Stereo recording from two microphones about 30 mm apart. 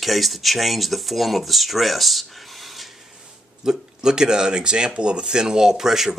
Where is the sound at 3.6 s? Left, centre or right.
Right.